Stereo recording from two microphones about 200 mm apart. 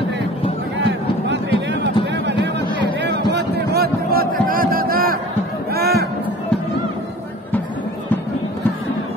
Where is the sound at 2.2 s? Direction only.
60° right (ahead or behind).